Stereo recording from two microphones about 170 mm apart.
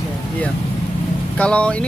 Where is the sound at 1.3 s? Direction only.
5° left (ahead or behind).